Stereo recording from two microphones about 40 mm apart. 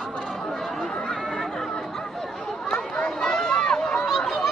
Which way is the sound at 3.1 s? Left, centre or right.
Centre.